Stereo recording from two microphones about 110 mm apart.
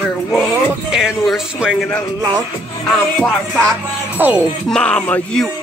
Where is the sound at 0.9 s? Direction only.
5° right (ahead or behind).